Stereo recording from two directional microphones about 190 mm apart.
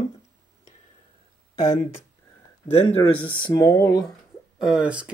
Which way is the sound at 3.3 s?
25° left (ahead or behind).